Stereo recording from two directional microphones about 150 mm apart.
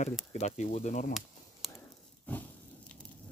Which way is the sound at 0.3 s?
50° left (ahead or behind).